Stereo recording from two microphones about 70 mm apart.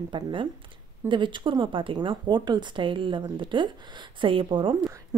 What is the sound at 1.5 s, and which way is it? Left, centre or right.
Speech, right.